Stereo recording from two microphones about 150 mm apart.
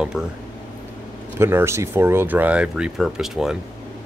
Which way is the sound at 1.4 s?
15° right (ahead or behind).